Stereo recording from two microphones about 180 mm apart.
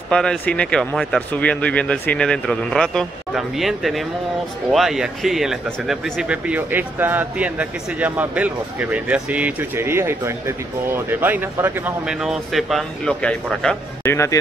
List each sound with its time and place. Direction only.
0.1 s speech: 5° left (ahead or behind)
14.1 s speech: 15° left (ahead or behind)